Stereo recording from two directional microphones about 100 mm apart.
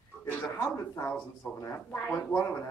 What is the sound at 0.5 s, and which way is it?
Speech, 20° left (ahead or behind).